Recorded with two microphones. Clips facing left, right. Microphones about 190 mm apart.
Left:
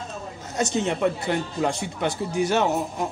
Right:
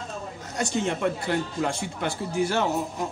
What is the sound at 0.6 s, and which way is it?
Speech, 20° left (ahead or behind).